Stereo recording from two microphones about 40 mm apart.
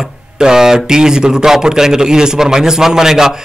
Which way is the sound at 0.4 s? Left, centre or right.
Centre.